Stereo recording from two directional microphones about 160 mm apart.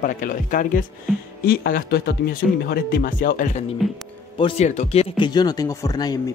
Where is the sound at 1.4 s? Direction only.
70° left (ahead or behind).